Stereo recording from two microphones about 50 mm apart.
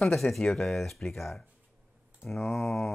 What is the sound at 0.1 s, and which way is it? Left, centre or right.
Speech, centre.